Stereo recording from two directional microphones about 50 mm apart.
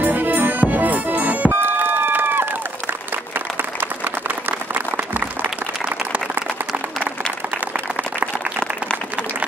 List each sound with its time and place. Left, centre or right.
0.0 s music: right
1.5 s run: right
4.7 s applause: right